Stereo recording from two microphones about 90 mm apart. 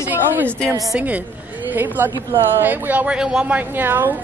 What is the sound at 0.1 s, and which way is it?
A woman's voice, 20° right (ahead or behind).